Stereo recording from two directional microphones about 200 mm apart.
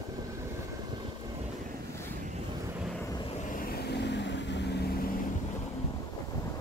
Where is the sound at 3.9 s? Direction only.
60° left (ahead or behind).